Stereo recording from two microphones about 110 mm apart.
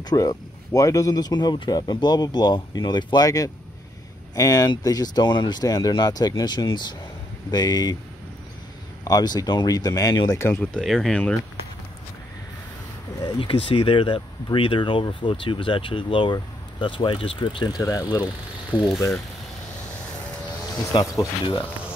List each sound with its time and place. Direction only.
0.0 s speech: 35° left (ahead or behind)
3.3 s speech: 30° left (ahead or behind)
9.0 s speech: 35° left (ahead or behind)
10.6 s speech: 5° left (ahead or behind)
13.2 s speech: 50° left (ahead or behind)
17.7 s speech: 30° left (ahead or behind)
18.8 s speech: 25° left (ahead or behind)
20.9 s speech: 45° left (ahead or behind)